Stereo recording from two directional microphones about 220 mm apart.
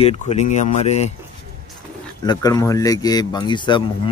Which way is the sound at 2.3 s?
15° left (ahead or behind).